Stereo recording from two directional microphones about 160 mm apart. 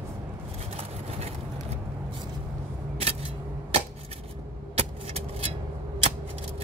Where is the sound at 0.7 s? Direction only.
40° right (ahead or behind).